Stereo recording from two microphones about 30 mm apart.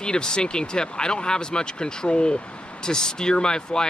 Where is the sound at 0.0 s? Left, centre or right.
Left.